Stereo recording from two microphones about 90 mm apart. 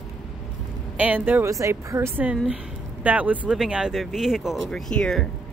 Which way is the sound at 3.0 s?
15° right (ahead or behind).